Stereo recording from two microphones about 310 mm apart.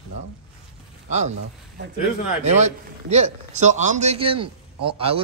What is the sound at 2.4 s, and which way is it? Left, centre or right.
A man's voice, right.